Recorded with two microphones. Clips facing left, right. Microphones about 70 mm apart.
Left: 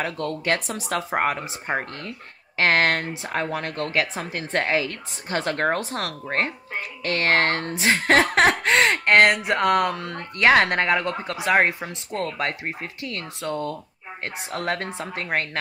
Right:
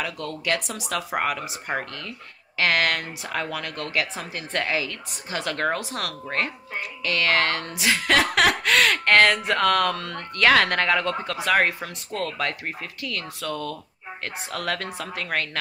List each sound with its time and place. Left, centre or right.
0.0 s speech: left